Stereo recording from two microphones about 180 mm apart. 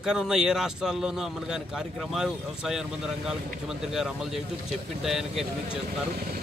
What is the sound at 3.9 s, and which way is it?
Speech, centre (ahead or behind).